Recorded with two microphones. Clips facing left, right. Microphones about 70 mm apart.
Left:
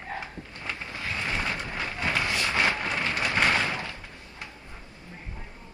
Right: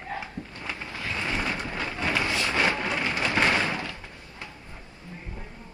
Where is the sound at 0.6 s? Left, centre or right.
Right.